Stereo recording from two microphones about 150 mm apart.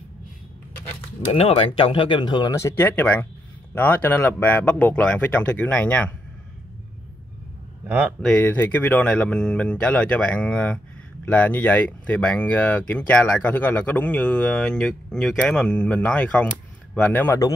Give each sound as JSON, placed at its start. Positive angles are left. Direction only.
{"t": 1.3, "sound": "speech", "side_deg": 40}
{"t": 8.2, "sound": "speech", "side_deg": 10}